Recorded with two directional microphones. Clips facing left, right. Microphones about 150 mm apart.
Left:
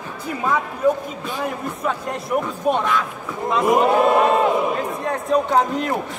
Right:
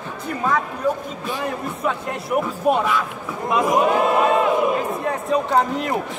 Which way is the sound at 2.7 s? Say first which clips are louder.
Right 1 dB; 5° right (ahead or behind).